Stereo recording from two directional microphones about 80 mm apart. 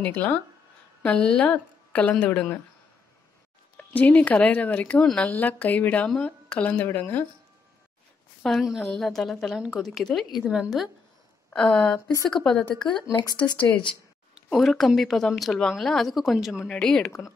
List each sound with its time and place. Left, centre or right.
0.0 s a woman's voice: centre
3.7 s a woman's voice: left
8.5 s speech: centre
11.5 s a woman's voice: centre
13.1 s speech: left
13.4 s speech: centre
14.5 s speech: centre
16.6 s a woman's voice: centre